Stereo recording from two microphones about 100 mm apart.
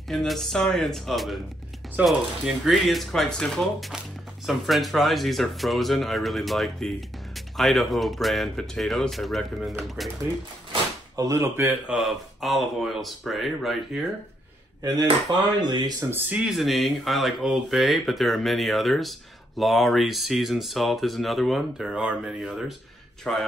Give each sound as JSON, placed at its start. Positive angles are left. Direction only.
{"t": 0.1, "sound": "speech", "side_deg": 5}
{"t": 11.1, "sound": "speech", "side_deg": -30}
{"t": 11.9, "sound": "speech", "side_deg": 0}
{"t": 14.8, "sound": "cutlery", "side_deg": -40}
{"t": 16.1, "sound": "speech", "side_deg": -20}
{"t": 16.3, "sound": "speech", "side_deg": -5}
{"t": 23.3, "sound": "speech", "side_deg": 10}